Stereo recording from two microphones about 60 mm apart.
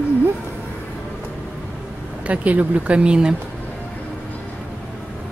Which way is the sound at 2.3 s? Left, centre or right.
Right.